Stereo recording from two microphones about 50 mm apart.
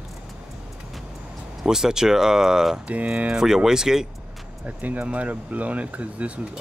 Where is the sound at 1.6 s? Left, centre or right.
Centre.